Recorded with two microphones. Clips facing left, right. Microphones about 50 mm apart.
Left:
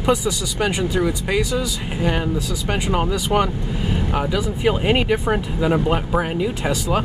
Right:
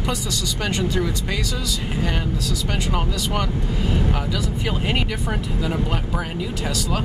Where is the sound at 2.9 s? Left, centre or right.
Centre.